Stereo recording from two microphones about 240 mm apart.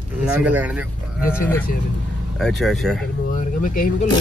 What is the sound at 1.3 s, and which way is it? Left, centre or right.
Speech, centre.